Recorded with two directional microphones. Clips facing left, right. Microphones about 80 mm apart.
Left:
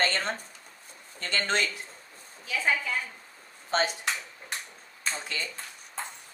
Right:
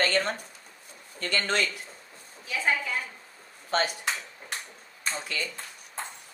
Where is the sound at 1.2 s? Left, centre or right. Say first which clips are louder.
Right 1 dB; left.